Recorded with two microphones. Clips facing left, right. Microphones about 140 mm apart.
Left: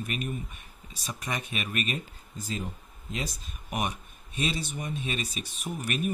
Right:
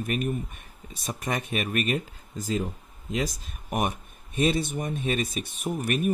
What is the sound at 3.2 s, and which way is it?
Speech, 90° right.